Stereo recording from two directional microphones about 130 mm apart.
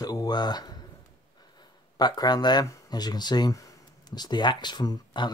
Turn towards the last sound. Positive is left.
turn(degrees=30)  # may be behind; listen again after turning